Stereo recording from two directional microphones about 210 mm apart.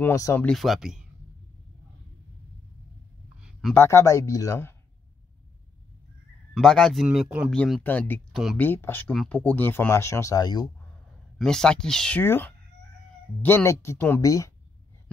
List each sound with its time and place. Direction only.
0.0 s speech: 15° left (ahead or behind); by 1.0 s centre (ahead or behind)
3.3 s a sound: 5° right (ahead or behind)
3.7 s speech: 10° left (ahead or behind)
6.5 s speech: 5° left (ahead or behind)
8.6 s speech: 10° left (ahead or behind)
11.3 s speech: 5° left (ahead or behind)